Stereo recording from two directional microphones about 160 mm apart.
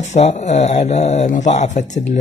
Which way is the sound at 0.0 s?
45° left (ahead or behind).